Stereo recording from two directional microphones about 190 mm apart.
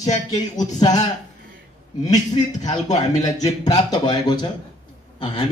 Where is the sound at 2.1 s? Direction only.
20° left (ahead or behind).